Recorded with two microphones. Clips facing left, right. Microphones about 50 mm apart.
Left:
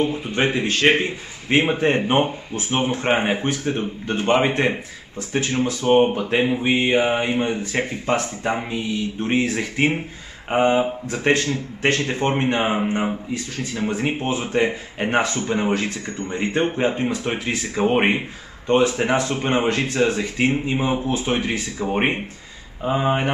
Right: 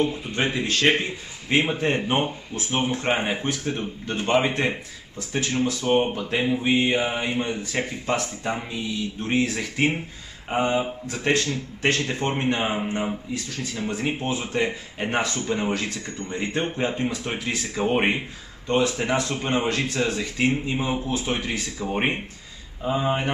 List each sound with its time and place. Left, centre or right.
0.0 s speech: centre